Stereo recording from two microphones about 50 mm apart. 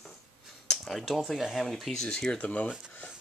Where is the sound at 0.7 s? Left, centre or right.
Centre.